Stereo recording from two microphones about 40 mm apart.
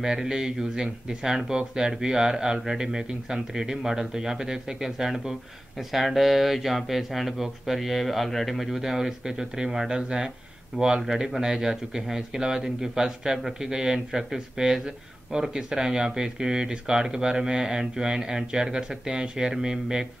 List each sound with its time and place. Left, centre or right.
0.0 s speech: centre
8.6 s speech: centre